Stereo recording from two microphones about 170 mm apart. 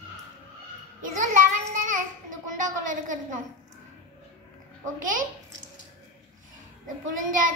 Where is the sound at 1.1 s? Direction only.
45° right (ahead or behind).